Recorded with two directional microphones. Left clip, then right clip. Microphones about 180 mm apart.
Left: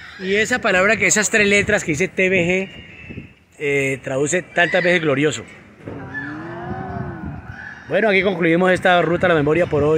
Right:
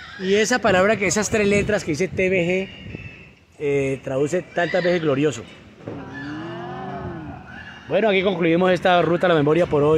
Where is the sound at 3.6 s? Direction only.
Centre (ahead or behind); by 5.3 s 15° left (ahead or behind).